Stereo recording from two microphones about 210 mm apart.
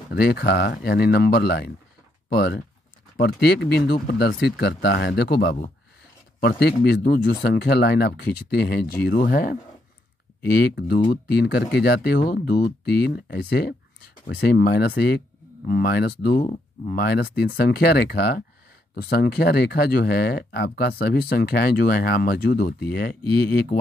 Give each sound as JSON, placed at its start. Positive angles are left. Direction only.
{"t": 0.1, "sound": "speech", "side_deg": 45}